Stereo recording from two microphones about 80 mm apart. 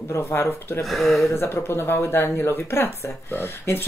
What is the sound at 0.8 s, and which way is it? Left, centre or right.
Speech, centre.